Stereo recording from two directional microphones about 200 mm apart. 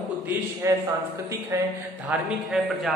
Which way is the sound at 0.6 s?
15° right (ahead or behind).